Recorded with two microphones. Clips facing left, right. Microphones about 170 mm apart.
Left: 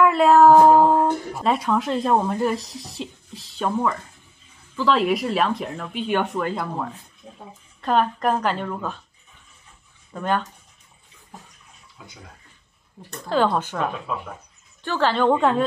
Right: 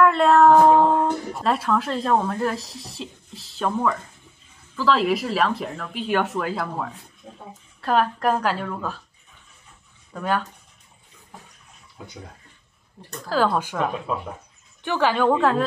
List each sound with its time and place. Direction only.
0.0 s speech: centre (ahead or behind)
7.8 s speech: 5° right (ahead or behind)
10.1 s speech: 5° right (ahead or behind)
12.0 s speech: 40° right (ahead or behind)
13.3 s speech: 5° right (ahead or behind)
15.3 s speech: centre (ahead or behind)